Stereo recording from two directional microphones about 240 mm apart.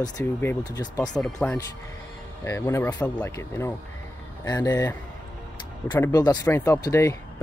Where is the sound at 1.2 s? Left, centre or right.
Centre.